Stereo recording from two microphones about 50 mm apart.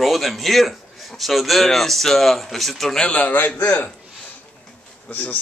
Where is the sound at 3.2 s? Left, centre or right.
Left.